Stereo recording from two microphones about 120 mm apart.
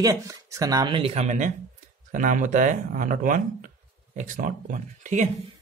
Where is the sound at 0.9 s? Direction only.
60° right (ahead or behind); by 1.5 s 80° right.